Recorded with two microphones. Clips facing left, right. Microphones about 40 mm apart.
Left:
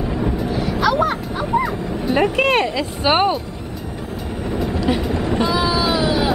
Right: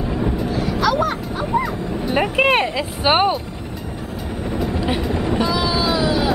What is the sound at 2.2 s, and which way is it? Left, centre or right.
Speech, centre.